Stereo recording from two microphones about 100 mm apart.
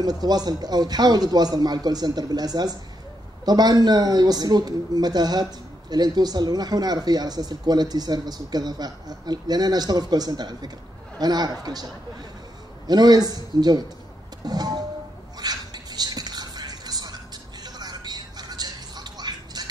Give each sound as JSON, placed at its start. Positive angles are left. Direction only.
{"t": 0.0, "sound": "speech", "side_deg": -40}
{"t": 14.4, "sound": "music", "side_deg": -40}